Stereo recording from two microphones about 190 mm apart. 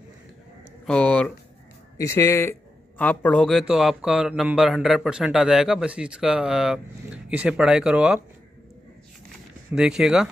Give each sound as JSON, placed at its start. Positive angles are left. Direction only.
{"t": 0.8, "sound": "speech", "side_deg": 5}
{"t": 9.8, "sound": "speech", "side_deg": -5}